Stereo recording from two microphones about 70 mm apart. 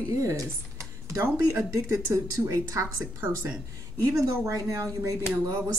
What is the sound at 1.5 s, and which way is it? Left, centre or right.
Speech, right.